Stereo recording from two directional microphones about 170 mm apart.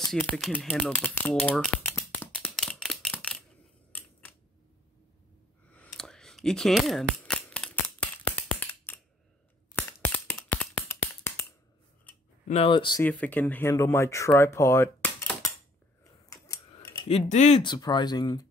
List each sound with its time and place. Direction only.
0.2 s speech: 5° left (ahead or behind)
0.6 s a sound: 5° left (ahead or behind)
5.7 s a sound: 5° left (ahead or behind)
10.9 s finger snapping: 15° left (ahead or behind)
12.4 s speech: 35° left (ahead or behind)
13.0 s speech: 10° left (ahead or behind)
16.3 s scissors: 20° left (ahead or behind)
17.3 s speech: 45° left (ahead or behind)
17.6 s speech: 25° left (ahead or behind)